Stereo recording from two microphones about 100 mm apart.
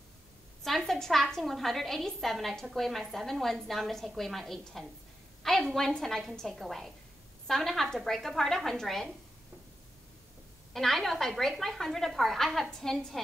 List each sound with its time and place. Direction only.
0.7 s a woman's voice: centre (ahead or behind)
10.7 s a woman's voice: 5° left (ahead or behind)